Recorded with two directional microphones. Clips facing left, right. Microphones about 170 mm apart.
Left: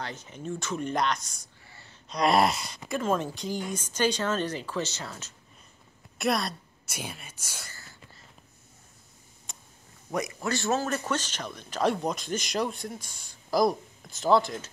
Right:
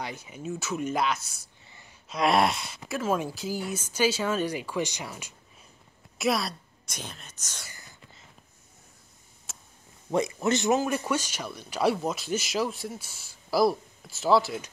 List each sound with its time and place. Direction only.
0.0 s speech: 10° right (ahead or behind)
1.7 s gasp: 15° right (ahead or behind)
2.0 s speech: centre (ahead or behind)
6.1 s a sound: centre (ahead or behind)
7.0 s speech: 10° left (ahead or behind)
9.5 s a sound: 5° right (ahead or behind)
10.1 s speech: 25° right (ahead or behind); by 14.7 s 5° right (ahead or behind)